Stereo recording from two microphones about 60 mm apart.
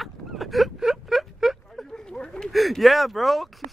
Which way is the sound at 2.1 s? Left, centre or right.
Centre.